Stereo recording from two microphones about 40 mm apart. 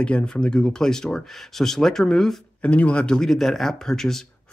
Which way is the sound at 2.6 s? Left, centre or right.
Left.